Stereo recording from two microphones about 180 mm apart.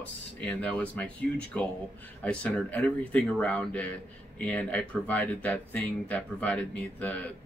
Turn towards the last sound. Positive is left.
turn(degrees=10)  # may be behind; listen again after turning